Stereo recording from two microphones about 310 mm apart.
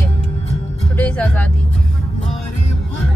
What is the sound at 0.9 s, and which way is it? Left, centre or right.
Speech, centre.